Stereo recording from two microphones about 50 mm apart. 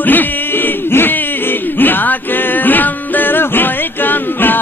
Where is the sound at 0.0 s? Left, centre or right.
Left.